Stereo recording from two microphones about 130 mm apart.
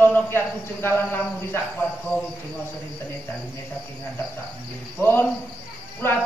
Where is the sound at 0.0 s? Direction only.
15° left (ahead or behind).